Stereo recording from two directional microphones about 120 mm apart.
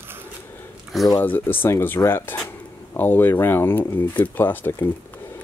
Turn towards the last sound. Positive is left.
turn(degrees=20)  # may be behind; listen again after turning